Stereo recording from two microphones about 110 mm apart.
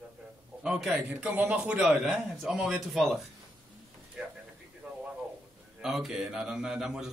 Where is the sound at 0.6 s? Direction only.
5° right (ahead or behind).